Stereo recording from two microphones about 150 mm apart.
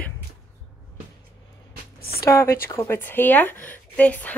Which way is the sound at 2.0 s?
90° left.